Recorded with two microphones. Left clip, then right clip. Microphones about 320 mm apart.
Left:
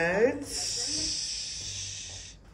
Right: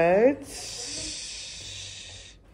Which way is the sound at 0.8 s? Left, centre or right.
Right.